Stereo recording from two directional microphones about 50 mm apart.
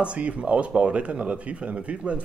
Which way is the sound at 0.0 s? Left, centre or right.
Right.